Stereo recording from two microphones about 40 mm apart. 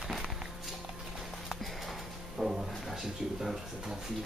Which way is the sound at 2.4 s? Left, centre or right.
Centre.